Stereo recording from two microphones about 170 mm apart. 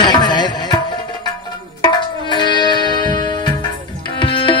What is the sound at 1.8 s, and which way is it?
Music, 25° left (ahead or behind).